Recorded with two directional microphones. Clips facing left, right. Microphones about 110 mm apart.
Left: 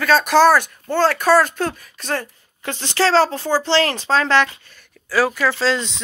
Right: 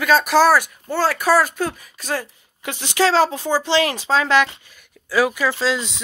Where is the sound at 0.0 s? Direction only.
10° right (ahead or behind).